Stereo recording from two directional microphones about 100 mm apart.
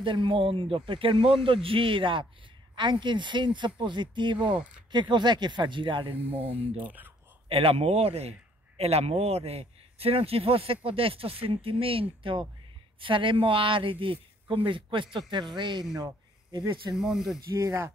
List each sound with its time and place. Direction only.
0.0 s speech: 55° right (ahead or behind)
6.1 s speech: 15° right (ahead or behind)
7.4 s a man's voice: 70° right (ahead or behind); by 16.8 s 45° right (ahead or behind)
16.9 s speech: 5° right (ahead or behind)